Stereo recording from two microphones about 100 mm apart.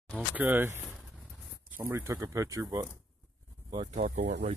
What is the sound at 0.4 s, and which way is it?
Speech, 20° right (ahead or behind).